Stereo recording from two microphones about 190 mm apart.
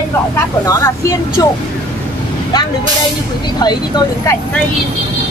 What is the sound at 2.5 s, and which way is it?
Speech, 20° left (ahead or behind).